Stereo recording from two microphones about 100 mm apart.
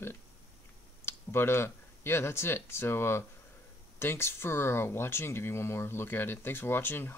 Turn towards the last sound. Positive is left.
turn(degrees=20)  # may be behind; listen again after turning